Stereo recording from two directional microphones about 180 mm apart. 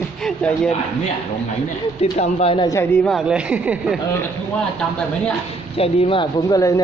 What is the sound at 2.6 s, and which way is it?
Speech, 15° left (ahead or behind).